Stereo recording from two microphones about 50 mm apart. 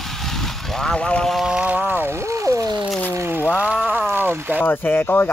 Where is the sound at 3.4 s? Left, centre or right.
Left.